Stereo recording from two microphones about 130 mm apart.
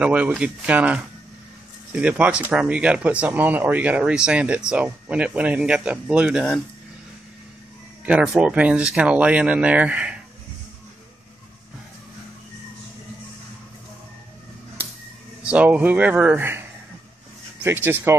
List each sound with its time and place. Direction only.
0.0 s speech: 10° right (ahead or behind)
8.0 s speech: 5° right (ahead or behind)
15.4 s speech: 10° right (ahead or behind)
17.6 s speech: 15° right (ahead or behind)